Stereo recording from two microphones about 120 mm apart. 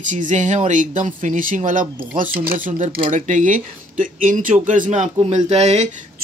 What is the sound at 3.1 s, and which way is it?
Speech, 90° right.